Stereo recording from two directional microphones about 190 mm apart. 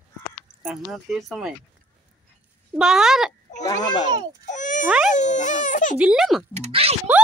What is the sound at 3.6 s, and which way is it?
Speech, 20° left (ahead or behind).